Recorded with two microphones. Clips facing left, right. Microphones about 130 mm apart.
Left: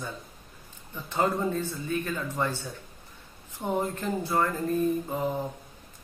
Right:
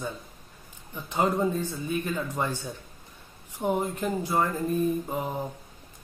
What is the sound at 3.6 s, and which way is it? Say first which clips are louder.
Speech: right 2 dB; 15° right (ahead or behind).